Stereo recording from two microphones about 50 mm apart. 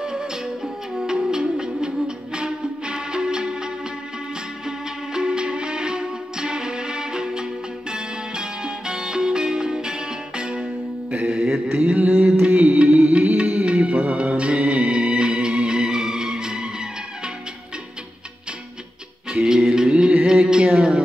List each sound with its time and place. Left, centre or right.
0.0 s music: centre
11.2 s mantra: centre
19.4 s music: centre
20.2 s a sound: centre